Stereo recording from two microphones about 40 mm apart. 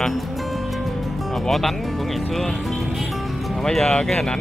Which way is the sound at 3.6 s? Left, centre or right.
Centre.